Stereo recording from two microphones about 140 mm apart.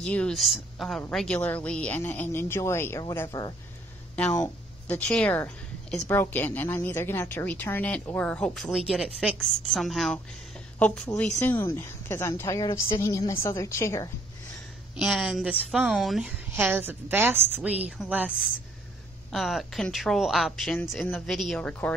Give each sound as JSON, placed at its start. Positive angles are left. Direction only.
{"t": 0.0, "sound": "a woman's voice", "side_deg": 5}
{"t": 4.2, "sound": "speech", "side_deg": 15}
{"t": 5.0, "sound": "a woman's voice", "side_deg": 10}
{"t": 11.3, "sound": "speech", "side_deg": 15}
{"t": 15.0, "sound": "a woman's voice", "side_deg": 0}
{"t": 19.3, "sound": "speech", "side_deg": 0}